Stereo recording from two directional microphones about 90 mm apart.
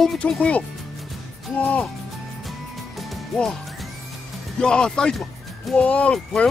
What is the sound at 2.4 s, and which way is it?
Music, centre (ahead or behind).